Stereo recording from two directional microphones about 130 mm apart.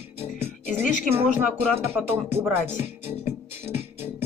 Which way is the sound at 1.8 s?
15° right (ahead or behind).